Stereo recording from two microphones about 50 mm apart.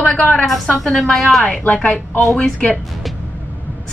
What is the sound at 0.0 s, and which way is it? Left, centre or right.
Speech, left.